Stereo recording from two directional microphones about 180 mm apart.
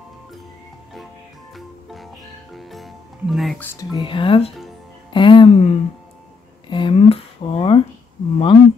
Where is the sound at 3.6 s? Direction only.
20° left (ahead or behind).